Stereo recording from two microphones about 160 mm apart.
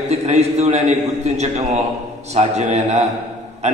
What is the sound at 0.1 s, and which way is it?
A man's voice, 45° right (ahead or behind).